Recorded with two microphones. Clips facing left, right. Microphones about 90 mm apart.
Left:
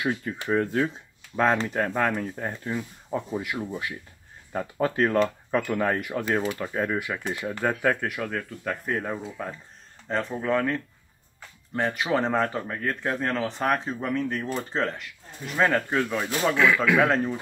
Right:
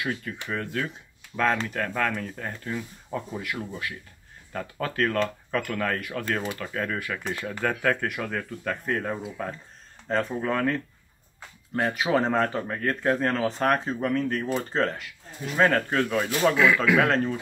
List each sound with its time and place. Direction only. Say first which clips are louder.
0.0 s speech: left 3 dB; 25° left (ahead or behind); by 8.1 s 10° left (ahead or behind)
8.1 s speech: even; centre (ahead or behind)